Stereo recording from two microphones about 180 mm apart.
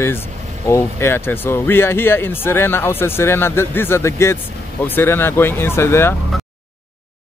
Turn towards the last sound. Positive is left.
turn(degrees=15)  # may be behind; listen again after turning